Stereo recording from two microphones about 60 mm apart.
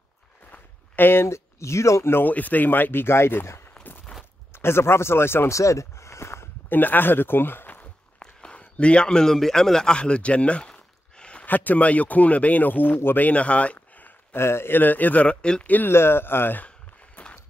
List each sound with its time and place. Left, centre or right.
0.5 s a sound: left
1.2 s speech: left
2.2 s speech: left
4.6 s speech: left
5.5 s a sound: left
6.7 s speech: left
8.2 s a sound: centre
11.4 s speech: left
14.3 s speech: left
14.8 s speech: left
15.9 s speech: left
16.6 s a sound: left